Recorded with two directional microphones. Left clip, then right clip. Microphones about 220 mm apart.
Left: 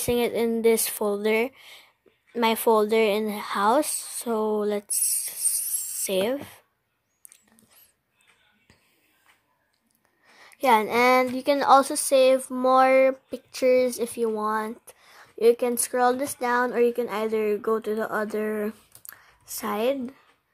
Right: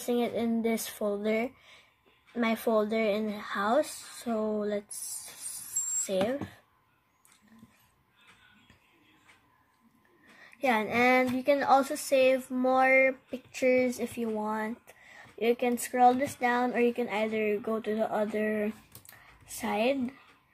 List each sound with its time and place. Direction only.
0.0 s a woman's voice: 45° left (ahead or behind)
10.4 s a woman's voice: 50° left (ahead or behind)